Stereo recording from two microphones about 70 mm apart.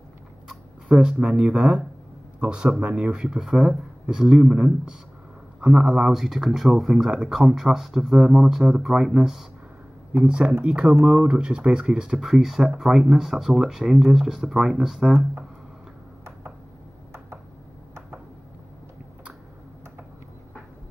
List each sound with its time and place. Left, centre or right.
0.5 s a sound: centre
1.2 s speech: centre
11.3 s speech: centre